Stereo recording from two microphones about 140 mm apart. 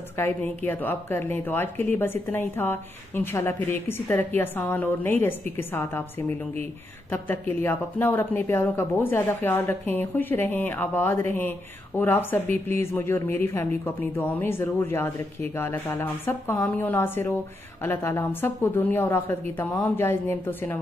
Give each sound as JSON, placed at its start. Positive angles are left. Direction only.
{"t": 0.2, "sound": "a woman's voice", "side_deg": 10}